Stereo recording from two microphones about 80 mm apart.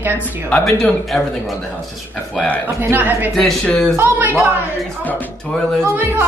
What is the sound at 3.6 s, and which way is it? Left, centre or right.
Speech, centre.